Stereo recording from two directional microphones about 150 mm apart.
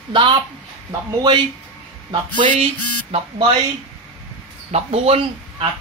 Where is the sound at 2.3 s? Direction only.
45° right (ahead or behind).